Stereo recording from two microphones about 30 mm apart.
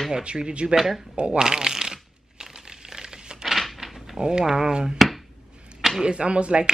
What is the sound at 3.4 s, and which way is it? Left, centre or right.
Cupboard open or close, centre.